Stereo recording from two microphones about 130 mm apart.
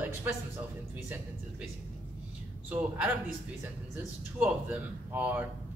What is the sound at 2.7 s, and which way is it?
Speech, 15° right (ahead or behind).